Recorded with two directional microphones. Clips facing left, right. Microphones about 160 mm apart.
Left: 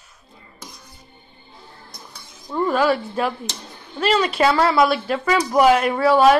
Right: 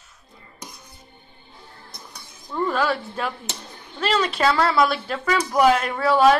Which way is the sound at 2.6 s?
10° left (ahead or behind).